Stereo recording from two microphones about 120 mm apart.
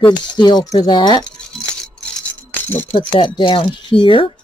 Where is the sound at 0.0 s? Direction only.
40° left (ahead or behind).